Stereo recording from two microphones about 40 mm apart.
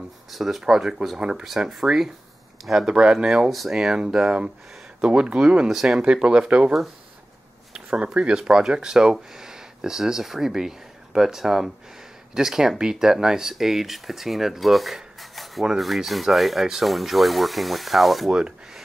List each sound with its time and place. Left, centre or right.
0.3 s speech: centre
1.4 s speech: centre
2.9 s speech: right
3.3 s speech: centre
4.0 s speech: right
5.7 s speech: centre
6.2 s speech: right
7.7 s a sound: centre
8.1 s speech: right; by 18.3 s centre
18.3 s speech: centre